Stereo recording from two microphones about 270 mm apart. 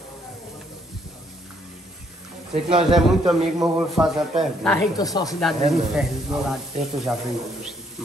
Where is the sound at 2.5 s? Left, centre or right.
Centre.